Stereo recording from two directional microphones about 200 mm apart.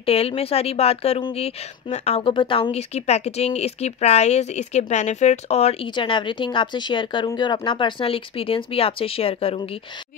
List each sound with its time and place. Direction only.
0.0 s a woman's voice: 30° left (ahead or behind)